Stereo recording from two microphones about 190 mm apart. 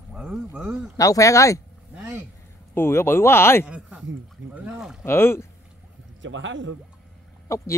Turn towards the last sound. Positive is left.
turn(degrees=15)  # may be behind; listen again after turning